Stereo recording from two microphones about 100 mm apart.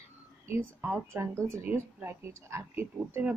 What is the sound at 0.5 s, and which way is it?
A woman's voice, 25° right (ahead or behind).